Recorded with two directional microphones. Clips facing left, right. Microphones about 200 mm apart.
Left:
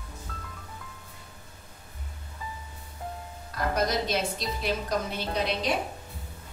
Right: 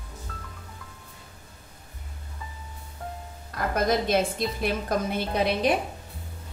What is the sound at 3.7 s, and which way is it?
A woman's voice, 55° right (ahead or behind).